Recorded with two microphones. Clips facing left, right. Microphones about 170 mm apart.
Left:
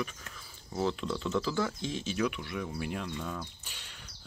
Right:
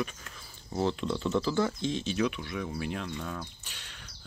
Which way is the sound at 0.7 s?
25° right (ahead or behind).